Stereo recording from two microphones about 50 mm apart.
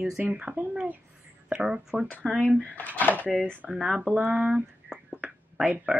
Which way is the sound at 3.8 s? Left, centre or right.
Centre.